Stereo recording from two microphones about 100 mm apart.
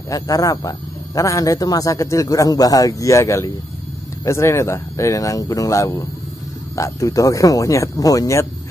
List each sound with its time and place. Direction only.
0.1 s a man's voice: 35° left (ahead or behind)